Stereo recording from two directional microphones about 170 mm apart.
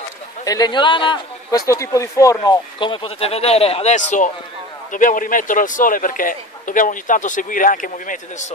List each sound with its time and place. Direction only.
0.5 s a man's voice: 25° left (ahead or behind); by 8.2 s 50° left (ahead or behind)